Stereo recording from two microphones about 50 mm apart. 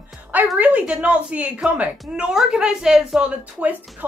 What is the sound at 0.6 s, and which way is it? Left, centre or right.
Speech, right.